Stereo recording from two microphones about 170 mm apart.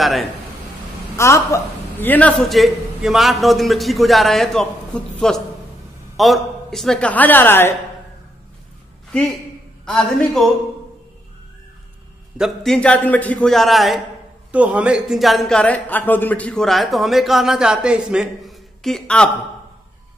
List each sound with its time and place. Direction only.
0.0 s speech: centre (ahead or behind)
1.1 s a man's voice: 15° left (ahead or behind)
9.8 s a man's voice: centre (ahead or behind)
12.4 s a man's voice: centre (ahead or behind)